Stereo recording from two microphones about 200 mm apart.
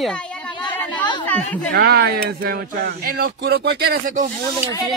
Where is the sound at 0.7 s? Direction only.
10° left (ahead or behind).